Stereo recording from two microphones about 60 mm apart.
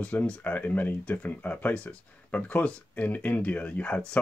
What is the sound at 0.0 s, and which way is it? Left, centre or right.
Speech, left.